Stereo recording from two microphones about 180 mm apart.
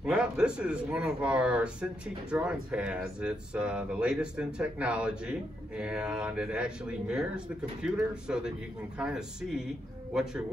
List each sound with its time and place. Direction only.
0.0 s speech: 5° right (ahead or behind)